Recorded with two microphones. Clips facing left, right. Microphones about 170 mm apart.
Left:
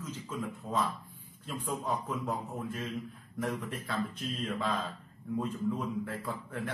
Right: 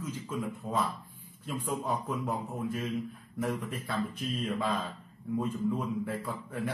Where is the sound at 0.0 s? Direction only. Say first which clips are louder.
Right 3 dB; 10° right (ahead or behind).